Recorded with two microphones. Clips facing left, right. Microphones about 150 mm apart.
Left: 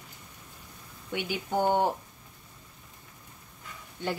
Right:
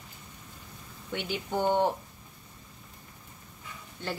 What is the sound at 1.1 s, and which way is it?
Speech, 10° left (ahead or behind).